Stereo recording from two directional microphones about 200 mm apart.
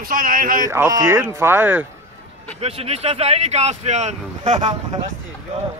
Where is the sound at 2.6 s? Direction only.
30° right (ahead or behind).